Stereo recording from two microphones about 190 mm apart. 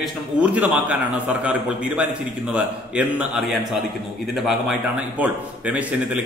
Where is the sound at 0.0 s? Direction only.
5° right (ahead or behind).